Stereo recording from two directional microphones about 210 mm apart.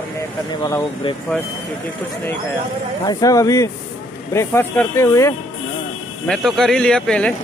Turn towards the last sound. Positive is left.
turn(degrees=5)  # may be behind; listen again after turning